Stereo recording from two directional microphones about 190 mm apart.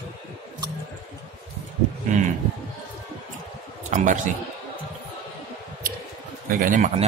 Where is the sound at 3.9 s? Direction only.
40° right (ahead or behind).